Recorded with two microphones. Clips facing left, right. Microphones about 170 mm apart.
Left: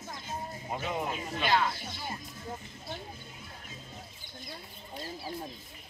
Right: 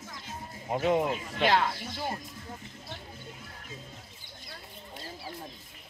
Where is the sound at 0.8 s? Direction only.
70° right (ahead or behind).